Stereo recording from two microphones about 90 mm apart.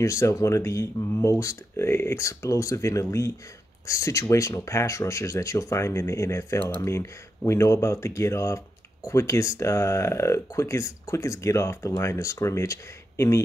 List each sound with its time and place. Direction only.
0.0 s speech: 35° left (ahead or behind)